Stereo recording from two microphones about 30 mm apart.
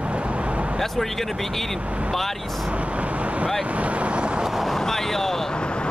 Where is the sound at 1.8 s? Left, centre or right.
Right.